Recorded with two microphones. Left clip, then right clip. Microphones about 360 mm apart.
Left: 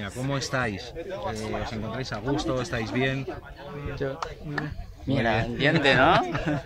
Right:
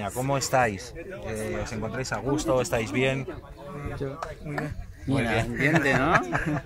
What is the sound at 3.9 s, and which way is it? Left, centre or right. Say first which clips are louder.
A man's voice: left 4 dB; left.